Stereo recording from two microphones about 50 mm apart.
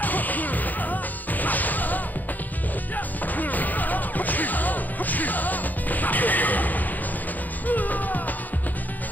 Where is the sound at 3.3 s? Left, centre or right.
Left.